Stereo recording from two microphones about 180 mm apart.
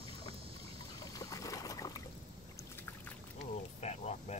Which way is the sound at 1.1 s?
20° left (ahead or behind).